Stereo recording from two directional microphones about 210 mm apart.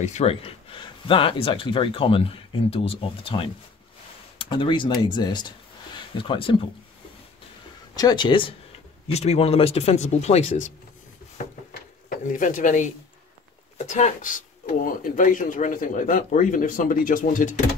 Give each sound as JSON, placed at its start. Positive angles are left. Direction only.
{"t": 0.0, "sound": "speech", "side_deg": 30}
{"t": 7.9, "sound": "speech", "side_deg": 20}
{"t": 11.7, "sound": "drawer open or close", "side_deg": 40}
{"t": 13.7, "sound": "speech", "side_deg": 35}